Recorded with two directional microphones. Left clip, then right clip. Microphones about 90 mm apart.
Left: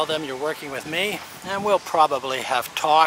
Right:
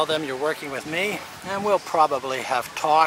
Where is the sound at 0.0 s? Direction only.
Centre (ahead or behind).